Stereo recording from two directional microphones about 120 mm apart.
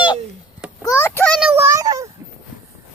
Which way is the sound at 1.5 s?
15° right (ahead or behind).